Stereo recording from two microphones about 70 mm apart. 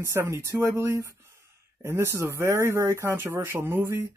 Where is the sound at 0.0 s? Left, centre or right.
Right.